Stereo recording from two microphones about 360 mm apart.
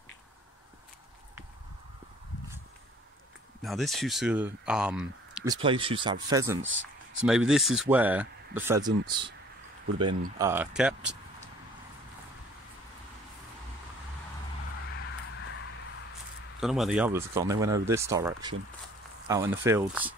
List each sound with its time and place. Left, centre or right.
3.6 s speech: centre
6.6 s speech: right
7.2 s speech: centre
10.4 s speech: centre
16.5 s speech: centre